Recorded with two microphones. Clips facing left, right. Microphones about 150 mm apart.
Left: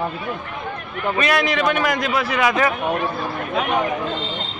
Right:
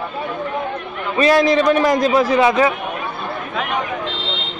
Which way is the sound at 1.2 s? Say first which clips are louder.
Right 7 dB; 35° right (ahead or behind).